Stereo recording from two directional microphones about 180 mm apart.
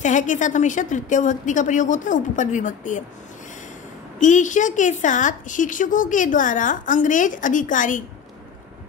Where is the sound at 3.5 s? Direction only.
45° left (ahead or behind).